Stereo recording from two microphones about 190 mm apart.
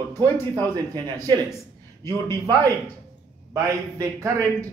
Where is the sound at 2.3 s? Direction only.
20° right (ahead or behind).